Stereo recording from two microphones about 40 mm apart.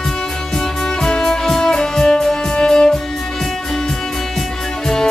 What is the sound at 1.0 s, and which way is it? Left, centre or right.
Music, centre.